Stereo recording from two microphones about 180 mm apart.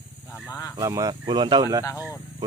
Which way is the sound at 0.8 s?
20° right (ahead or behind).